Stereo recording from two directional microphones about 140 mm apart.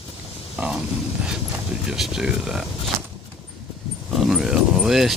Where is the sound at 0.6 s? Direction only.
5° right (ahead or behind).